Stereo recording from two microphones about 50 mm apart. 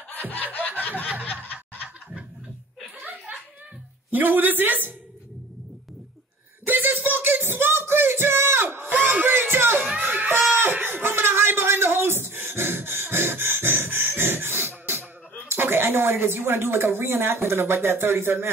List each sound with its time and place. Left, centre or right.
0.1 s snicker: left
3.0 s chuckle: right
4.1 s speech: right
6.6 s a sound: right
9.1 s music: right
9.9 s laughter: right
10.3 s a sound: right
15.5 s speech: right